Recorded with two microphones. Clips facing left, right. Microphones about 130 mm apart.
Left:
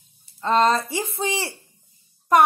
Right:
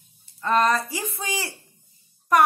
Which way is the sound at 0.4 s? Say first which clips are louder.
Left 2 dB; 25° left (ahead or behind).